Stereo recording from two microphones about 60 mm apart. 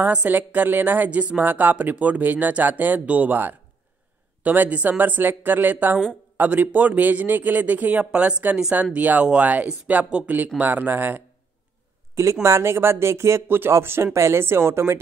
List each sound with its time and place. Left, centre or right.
0.3 s a woman's voice: right
12.2 s speech: right
13.5 s a woman's voice: right